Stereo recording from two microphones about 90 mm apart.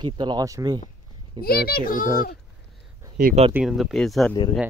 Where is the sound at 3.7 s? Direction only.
Centre (ahead or behind).